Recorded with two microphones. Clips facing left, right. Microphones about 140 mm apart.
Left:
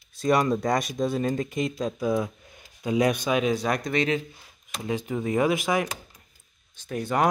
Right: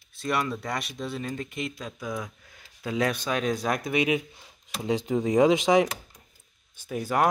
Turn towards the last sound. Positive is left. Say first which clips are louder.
# even
turn(degrees=-5)  # may be behind; listen again after turning